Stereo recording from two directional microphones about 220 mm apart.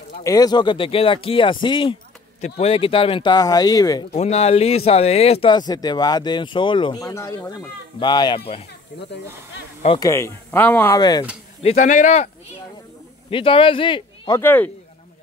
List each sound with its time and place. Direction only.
0.2 s speech: 15° left (ahead or behind)
4.1 s speech: 30° left (ahead or behind)
9.8 s speech: 15° left (ahead or behind)
11.6 s speech: 35° left (ahead or behind)
13.3 s a man's voice: 25° left (ahead or behind)
14.4 s speech: 10° left (ahead or behind)